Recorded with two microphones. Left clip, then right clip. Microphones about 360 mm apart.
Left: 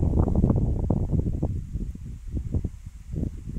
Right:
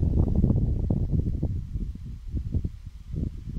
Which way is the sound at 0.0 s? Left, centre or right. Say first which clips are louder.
Left 3 dB; left.